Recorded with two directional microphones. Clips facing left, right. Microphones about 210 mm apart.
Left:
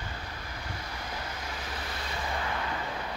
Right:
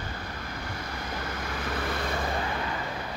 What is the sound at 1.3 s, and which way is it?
Vehicle, 55° right (ahead or behind).